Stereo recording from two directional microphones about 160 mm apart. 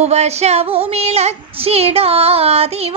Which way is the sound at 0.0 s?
45° right (ahead or behind).